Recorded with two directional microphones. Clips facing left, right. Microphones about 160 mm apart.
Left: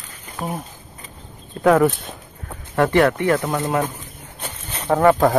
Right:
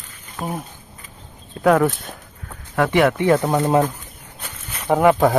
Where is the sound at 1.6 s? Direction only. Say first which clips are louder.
Left 1 dB; centre (ahead or behind).